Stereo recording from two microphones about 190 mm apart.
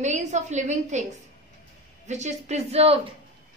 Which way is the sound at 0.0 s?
40° right (ahead or behind).